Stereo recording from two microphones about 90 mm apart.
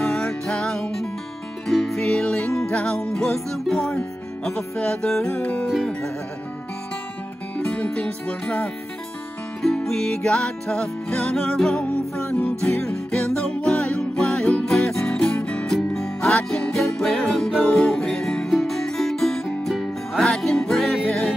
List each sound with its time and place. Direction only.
0.0 s music: 5° left (ahead or behind)
7.5 s music: 15° left (ahead or behind)
9.6 s music: 5° left (ahead or behind)